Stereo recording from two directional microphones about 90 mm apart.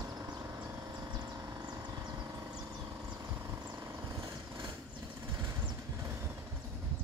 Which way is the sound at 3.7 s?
30° right (ahead or behind).